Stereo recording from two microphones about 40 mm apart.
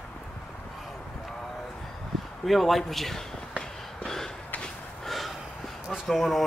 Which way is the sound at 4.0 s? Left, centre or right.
Centre.